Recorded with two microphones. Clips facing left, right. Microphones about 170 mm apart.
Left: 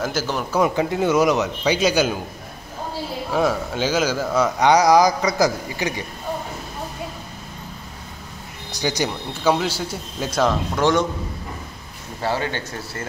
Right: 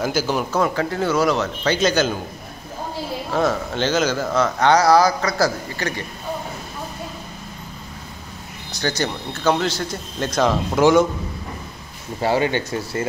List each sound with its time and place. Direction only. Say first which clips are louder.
0.0 s speech: right 3 dB; centre (ahead or behind)
0.5 s speech: left 1 dB; 15° left (ahead or behind)
3.3 s speech: even; 10° left (ahead or behind)
8.7 s speech: even; 15° left (ahead or behind)
10.8 s speech: right 5 dB; 5° right (ahead or behind)
12.2 s speech: right 5 dB; 15° right (ahead or behind)